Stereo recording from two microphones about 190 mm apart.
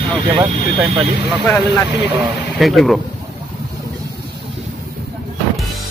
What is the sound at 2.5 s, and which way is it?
Speech, centre (ahead or behind).